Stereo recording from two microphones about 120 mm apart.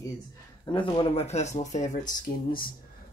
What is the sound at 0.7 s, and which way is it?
Speech, 45° left (ahead or behind).